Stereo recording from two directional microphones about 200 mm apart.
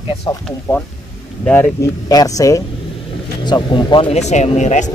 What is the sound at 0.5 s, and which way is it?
Speech, 5° left (ahead or behind).